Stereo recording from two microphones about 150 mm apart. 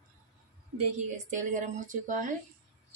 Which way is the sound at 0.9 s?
55° right (ahead or behind).